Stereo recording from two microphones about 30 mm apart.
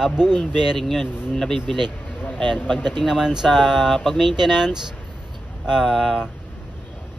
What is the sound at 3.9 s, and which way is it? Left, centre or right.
Speech, centre.